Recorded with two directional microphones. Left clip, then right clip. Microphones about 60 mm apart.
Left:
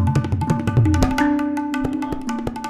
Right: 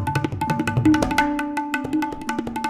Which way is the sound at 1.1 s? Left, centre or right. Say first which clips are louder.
Left 1 dB; right.